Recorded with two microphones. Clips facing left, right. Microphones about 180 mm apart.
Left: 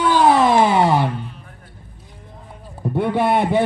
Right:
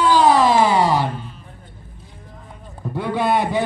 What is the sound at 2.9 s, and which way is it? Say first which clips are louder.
Speech: left 2 dB; 60° left (ahead or behind).